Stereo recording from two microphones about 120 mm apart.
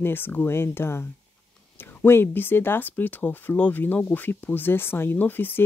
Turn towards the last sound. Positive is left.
turn(degrees=15)  # may be behind; listen again after turning